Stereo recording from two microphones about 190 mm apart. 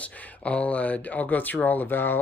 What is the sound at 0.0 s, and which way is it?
Speech, 5° left (ahead or behind).